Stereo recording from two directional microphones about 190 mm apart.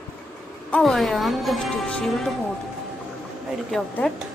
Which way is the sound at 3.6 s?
5° left (ahead or behind).